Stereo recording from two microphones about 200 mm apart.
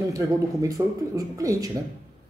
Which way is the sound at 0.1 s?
15° right (ahead or behind).